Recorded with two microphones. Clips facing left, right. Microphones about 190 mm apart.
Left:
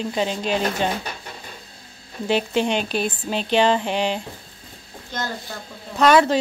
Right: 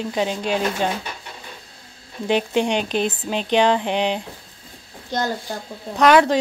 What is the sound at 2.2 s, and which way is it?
A woman's voice, 15° right (ahead or behind).